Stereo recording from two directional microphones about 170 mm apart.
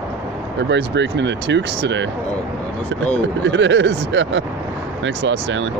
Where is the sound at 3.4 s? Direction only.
90° right.